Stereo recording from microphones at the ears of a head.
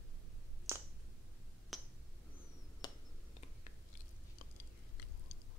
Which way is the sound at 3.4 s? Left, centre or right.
Left.